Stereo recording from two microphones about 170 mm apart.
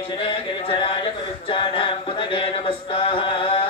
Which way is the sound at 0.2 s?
30° left (ahead or behind).